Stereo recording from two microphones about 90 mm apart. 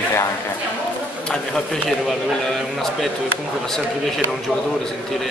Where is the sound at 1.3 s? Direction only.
5° left (ahead or behind).